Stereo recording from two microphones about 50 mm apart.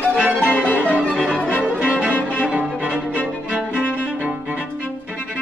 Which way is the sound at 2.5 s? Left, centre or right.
Right.